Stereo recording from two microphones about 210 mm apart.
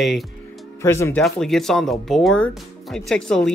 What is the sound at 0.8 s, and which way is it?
Speech, 15° left (ahead or behind).